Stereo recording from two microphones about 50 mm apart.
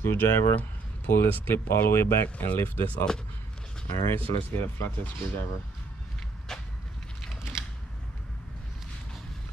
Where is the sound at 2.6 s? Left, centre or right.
Left.